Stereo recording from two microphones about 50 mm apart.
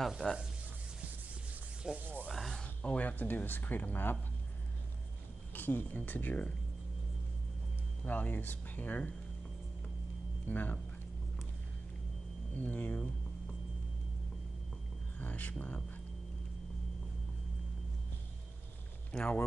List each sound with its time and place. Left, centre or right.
0.2 s speech: right
2.0 s rub: right
2.2 s a sound: centre
2.5 s speech: left
5.5 s speech: left
8.0 s speech: left
10.4 s speech: left
12.5 s speech: left
15.1 s speech: left
19.1 s speech: left